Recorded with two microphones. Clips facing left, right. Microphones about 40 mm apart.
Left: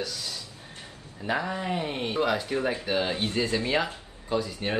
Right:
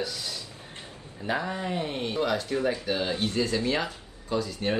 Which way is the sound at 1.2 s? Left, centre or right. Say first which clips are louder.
Left 1 dB; centre.